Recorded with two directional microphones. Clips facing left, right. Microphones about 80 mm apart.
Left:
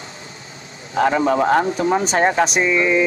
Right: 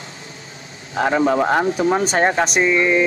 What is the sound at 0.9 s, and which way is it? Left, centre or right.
Speech, centre.